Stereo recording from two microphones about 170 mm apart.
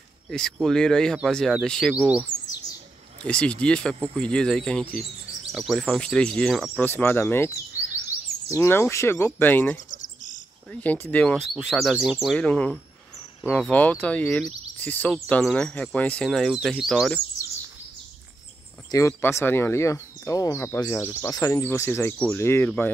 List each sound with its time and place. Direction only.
0.3 s speech: 5° left (ahead or behind)
3.3 s speech: 5° left (ahead or behind)
10.0 s cricket: 50° left (ahead or behind)
10.7 s speech: 10° left (ahead or behind)
18.9 s speech: 20° left (ahead or behind)